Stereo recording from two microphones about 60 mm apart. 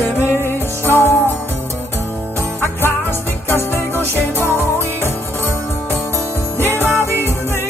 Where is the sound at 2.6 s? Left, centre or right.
Left.